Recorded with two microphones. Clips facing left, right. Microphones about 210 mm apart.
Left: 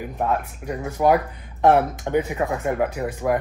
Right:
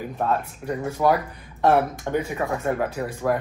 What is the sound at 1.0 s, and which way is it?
Speech, 15° left (ahead or behind).